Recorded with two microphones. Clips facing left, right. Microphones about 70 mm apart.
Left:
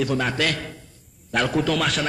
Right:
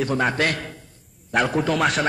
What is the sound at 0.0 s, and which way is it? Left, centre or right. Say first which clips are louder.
Speech: right 1 dB; right.